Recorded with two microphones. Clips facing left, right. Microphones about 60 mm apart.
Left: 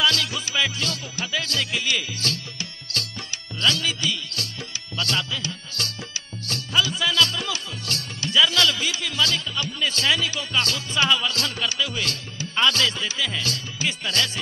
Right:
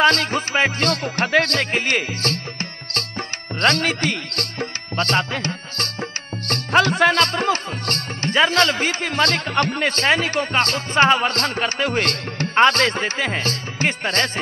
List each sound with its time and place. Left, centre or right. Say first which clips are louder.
0.0 s music: right 7 dB; right